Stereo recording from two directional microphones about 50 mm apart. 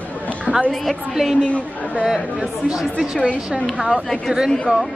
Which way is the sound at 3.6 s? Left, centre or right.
Centre.